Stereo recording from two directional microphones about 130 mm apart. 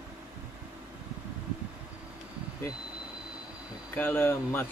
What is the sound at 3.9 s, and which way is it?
Speech, 15° left (ahead or behind).